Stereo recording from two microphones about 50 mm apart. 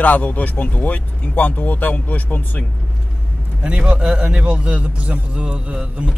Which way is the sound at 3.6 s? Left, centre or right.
Right.